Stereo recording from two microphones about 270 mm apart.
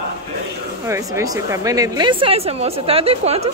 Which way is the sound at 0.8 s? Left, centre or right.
Centre.